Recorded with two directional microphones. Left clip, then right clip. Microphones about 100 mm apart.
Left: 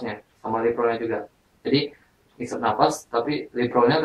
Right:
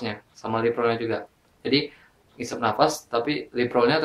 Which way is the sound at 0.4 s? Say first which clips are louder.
Left 1 dB; 30° right (ahead or behind).